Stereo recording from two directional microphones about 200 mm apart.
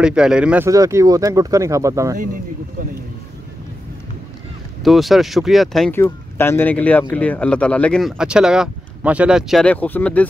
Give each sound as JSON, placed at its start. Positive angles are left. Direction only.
{"t": 0.0, "sound": "speech", "side_deg": -5}
{"t": 4.8, "sound": "speech", "side_deg": 0}
{"t": 5.9, "sound": "speech", "side_deg": 10}